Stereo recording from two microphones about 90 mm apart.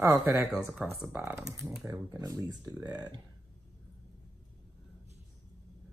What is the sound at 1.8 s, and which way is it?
Speech, 40° right (ahead or behind).